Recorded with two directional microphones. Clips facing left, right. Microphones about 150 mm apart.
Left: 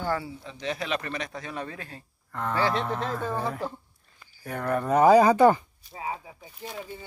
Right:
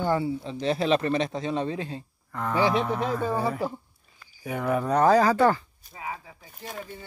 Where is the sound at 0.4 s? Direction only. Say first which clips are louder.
Right 6 dB; 30° right (ahead or behind).